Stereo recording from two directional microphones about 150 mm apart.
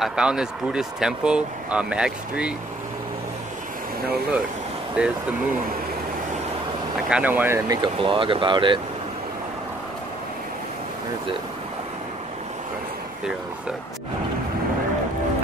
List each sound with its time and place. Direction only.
0.0 s speech: 5° right (ahead or behind)
5.0 s speech: 5° right (ahead or behind)
7.1 s speech: 10° right (ahead or behind)
8.0 s speech: 35° right (ahead or behind)